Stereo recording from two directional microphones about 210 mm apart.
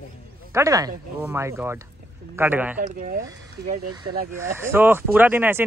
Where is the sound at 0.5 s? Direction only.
15° right (ahead or behind).